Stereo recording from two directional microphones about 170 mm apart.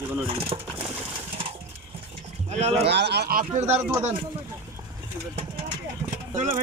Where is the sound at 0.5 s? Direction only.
35° right (ahead or behind).